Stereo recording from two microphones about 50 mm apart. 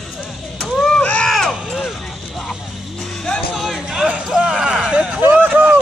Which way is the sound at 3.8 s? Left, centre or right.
Centre.